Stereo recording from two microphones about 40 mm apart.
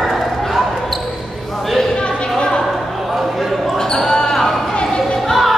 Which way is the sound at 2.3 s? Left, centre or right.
Left.